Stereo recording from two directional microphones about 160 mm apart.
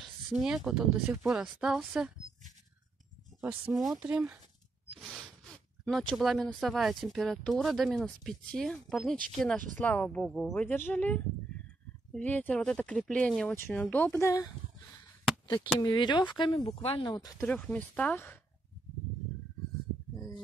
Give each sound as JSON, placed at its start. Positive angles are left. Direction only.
{"t": 0.0, "sound": "speech", "side_deg": -5}
{"t": 3.3, "sound": "speech", "side_deg": -5}
{"t": 10.6, "sound": "speech", "side_deg": 10}
{"t": 15.5, "sound": "speech", "side_deg": 30}
{"t": 17.5, "sound": "speech", "side_deg": 5}